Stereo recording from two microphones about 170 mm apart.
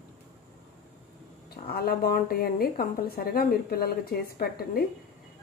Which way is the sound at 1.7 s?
60° left (ahead or behind).